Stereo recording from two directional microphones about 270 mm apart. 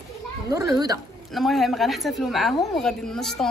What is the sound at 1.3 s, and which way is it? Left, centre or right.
A woman's voice, centre.